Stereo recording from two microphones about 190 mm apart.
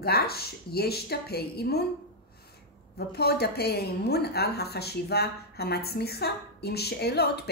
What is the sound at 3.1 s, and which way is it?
A woman's voice, 55° left (ahead or behind).